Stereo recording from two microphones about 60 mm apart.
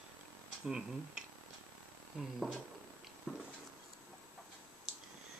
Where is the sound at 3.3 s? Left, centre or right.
Centre.